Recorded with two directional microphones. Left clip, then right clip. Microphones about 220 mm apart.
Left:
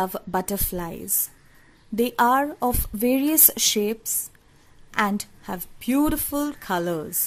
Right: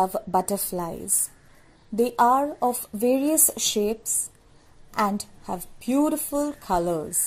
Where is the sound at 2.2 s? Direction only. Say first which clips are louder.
Even; 30° left (ahead or behind).